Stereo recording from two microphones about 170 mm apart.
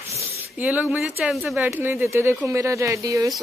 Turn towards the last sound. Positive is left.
turn(degrees=-20)  # may be behind; listen again after turning